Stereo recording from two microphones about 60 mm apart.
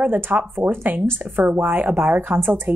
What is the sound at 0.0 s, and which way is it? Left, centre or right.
Speech, right.